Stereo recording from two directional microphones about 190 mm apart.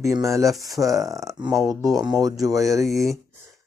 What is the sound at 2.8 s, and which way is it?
Speech, centre (ahead or behind).